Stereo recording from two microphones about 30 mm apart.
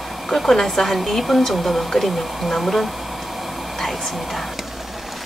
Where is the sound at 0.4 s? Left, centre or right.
Centre.